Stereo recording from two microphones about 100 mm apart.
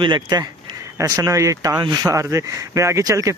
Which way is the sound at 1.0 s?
30° right (ahead or behind).